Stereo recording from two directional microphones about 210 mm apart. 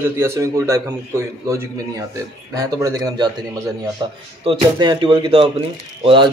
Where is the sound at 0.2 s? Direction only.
15° right (ahead or behind).